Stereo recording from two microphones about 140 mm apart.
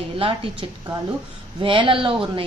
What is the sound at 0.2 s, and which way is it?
A woman's voice, 40° right (ahead or behind).